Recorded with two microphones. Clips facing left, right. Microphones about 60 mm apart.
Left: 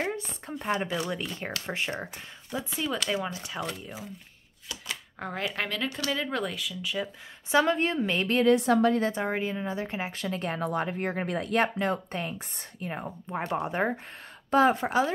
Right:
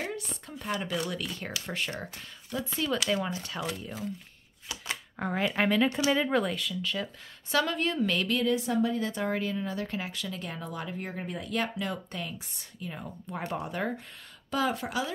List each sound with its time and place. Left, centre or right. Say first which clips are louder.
0.0 s a sound: left 4 dB; left
0.7 s speech: left 3 dB; left
2.7 s speech: right 1 dB; centre
5.2 s speech: right 4 dB; centre
7.5 s speech: left 4 dB; left
8.5 s a woman's voice: left 9 dB; left
9.1 s speech: left 1 dB; left
11.5 s speech: left 5 dB; left
13.6 s speech: left 6 dB; left